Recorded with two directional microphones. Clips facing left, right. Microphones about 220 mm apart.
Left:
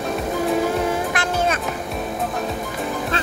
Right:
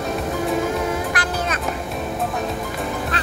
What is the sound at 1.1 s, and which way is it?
Music, 25° left (ahead or behind).